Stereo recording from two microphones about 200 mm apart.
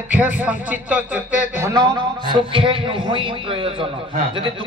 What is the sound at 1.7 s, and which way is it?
A man's voice, 20° right (ahead or behind).